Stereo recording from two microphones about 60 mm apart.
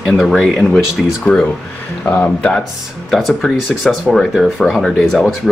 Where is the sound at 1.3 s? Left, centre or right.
Left.